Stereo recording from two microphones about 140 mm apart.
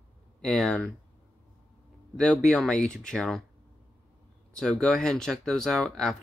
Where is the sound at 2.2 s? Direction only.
5° left (ahead or behind).